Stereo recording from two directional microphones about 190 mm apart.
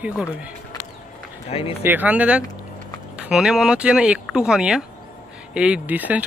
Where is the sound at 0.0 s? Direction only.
5° right (ahead or behind).